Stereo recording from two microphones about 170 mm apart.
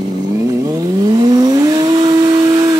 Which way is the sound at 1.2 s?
25° right (ahead or behind).